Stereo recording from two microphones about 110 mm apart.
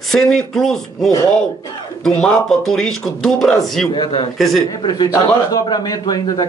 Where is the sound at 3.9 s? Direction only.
50° left (ahead or behind).